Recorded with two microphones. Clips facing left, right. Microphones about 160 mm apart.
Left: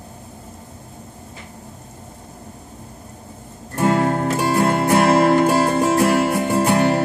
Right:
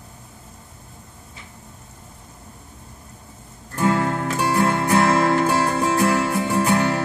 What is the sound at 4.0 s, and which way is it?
Music, 40° left (ahead or behind).